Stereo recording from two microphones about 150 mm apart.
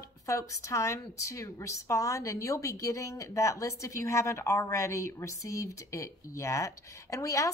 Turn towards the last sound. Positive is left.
turn(degrees=20)  # may be behind; listen again after turning